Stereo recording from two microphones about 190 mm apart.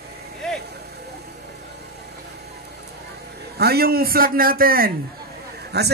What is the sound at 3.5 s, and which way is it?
Speech, 55° right (ahead or behind).